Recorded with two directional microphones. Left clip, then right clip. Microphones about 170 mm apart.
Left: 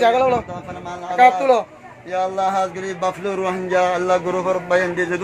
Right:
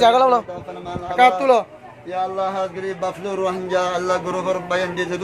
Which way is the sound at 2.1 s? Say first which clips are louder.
Left 3 dB; 80° left.